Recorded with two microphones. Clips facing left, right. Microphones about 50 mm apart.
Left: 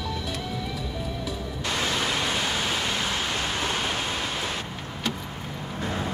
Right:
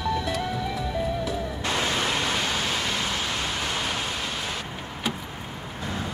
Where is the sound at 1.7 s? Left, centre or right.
Centre.